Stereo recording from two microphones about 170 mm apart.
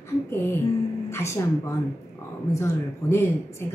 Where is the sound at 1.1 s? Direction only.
15° left (ahead or behind).